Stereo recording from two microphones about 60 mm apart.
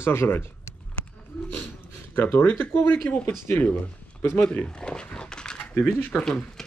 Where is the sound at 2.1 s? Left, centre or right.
Left.